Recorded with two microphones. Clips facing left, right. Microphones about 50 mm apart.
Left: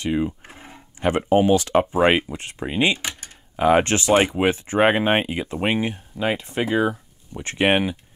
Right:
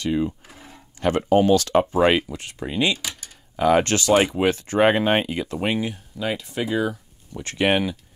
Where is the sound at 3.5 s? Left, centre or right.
Left.